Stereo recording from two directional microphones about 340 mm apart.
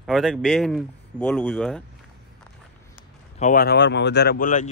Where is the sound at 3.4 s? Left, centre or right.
Left.